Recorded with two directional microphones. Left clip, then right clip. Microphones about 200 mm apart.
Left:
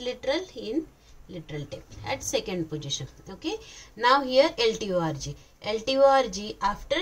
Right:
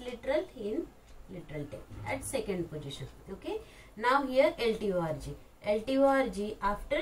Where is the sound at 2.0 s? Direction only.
40° left (ahead or behind).